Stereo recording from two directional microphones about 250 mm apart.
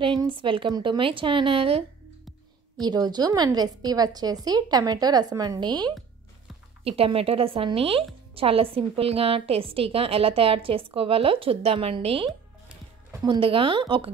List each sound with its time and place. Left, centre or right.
0.0 s a woman's voice: centre